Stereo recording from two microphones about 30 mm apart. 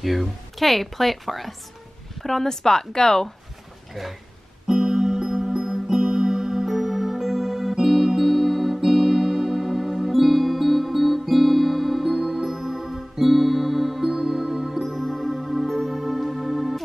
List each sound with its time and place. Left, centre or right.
0.0 s speech: centre
4.6 s music: centre
14.9 s music: centre